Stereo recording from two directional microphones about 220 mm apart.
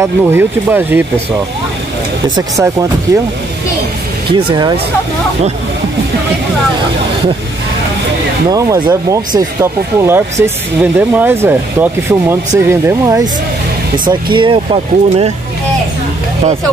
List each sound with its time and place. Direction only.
0.0 s speech: 10° right (ahead or behind)
3.1 s speech: 15° right (ahead or behind)
4.3 s speech: 20° right (ahead or behind)
8.5 s speech: 15° right (ahead or behind)